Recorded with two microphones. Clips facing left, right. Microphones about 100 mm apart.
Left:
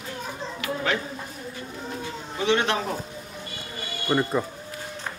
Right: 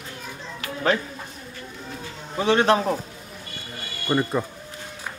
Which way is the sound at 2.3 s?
40° right (ahead or behind).